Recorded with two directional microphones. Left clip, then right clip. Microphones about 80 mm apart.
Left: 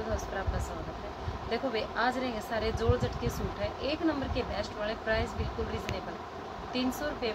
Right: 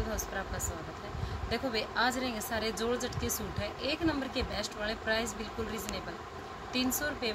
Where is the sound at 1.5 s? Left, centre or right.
Centre.